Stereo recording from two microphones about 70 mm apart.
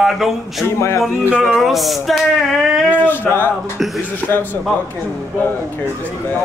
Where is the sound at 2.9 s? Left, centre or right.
Left.